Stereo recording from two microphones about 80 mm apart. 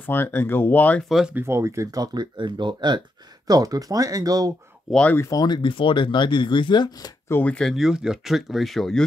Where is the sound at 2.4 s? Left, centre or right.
Right.